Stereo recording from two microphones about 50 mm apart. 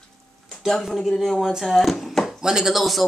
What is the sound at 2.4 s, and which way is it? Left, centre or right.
Speech, centre.